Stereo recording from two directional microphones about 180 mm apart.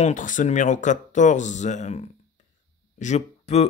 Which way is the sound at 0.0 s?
45° left (ahead or behind).